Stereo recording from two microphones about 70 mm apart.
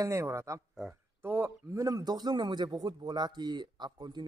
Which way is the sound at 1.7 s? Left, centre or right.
Right.